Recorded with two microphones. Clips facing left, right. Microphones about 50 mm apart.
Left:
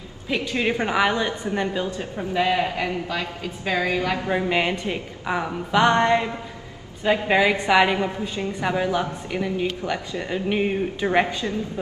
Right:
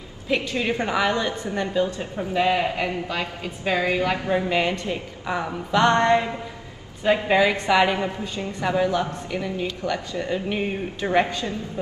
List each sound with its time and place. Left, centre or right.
0.6 s a woman's voice: left
2.1 s a woman's voice: centre
4.3 s a woman's voice: centre
7.2 s a woman's voice: centre